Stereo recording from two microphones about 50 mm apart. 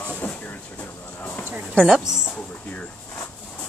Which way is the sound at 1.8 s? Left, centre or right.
Centre.